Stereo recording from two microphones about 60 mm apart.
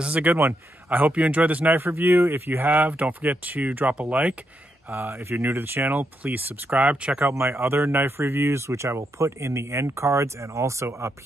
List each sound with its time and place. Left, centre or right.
0.0 s speech: right
4.8 s speech: right
7.2 s speech: right